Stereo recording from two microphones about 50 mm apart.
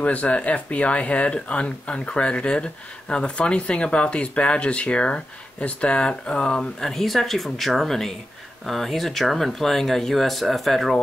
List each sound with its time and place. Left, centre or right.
0.0 s speech: left; by 11.0 s centre